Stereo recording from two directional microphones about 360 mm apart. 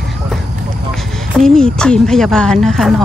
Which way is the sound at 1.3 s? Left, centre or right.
Centre.